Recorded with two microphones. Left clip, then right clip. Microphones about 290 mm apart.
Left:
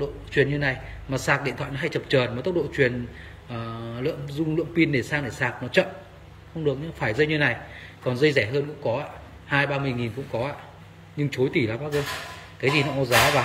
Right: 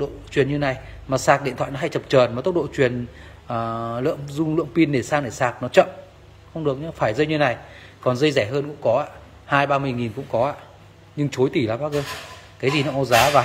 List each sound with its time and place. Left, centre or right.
0.0 s a man's voice: centre